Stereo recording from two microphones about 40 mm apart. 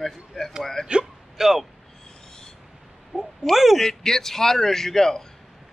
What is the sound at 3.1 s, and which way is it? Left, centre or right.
Speech, right.